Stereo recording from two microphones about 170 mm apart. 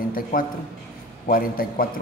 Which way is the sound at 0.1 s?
55° left (ahead or behind).